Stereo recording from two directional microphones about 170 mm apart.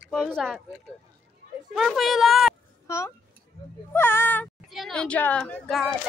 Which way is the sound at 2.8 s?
15° left (ahead or behind).